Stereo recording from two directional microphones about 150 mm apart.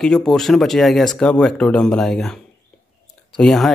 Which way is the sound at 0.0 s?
5° left (ahead or behind).